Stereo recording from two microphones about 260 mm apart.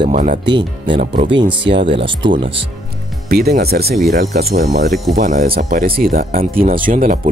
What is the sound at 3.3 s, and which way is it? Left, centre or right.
Speech, right.